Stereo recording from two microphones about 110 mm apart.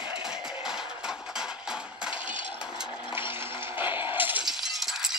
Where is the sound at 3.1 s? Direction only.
20° right (ahead or behind).